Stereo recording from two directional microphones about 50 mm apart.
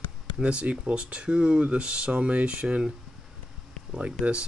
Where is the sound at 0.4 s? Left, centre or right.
Right.